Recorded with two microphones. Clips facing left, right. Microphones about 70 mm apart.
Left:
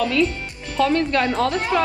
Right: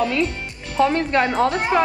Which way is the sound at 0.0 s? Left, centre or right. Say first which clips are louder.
Left 1 dB; right.